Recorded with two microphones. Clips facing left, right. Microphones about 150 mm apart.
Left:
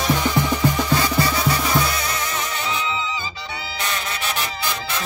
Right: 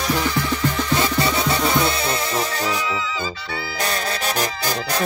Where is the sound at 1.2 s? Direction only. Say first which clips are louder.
Right 1 dB; 25° right (ahead or behind).